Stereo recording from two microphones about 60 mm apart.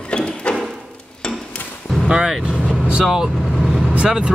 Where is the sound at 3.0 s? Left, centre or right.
Centre.